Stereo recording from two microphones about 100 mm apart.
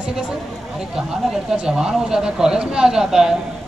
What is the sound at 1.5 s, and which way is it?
Speech, 5° right (ahead or behind).